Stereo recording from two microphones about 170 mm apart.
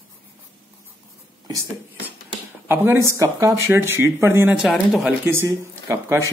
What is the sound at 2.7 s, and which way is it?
Speech, 15° right (ahead or behind).